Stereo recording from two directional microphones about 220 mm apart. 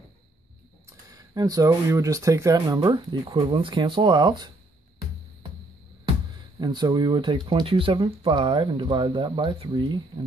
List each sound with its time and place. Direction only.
0.8 s speech: 15° right (ahead or behind)
6.6 s speech: 20° right (ahead or behind)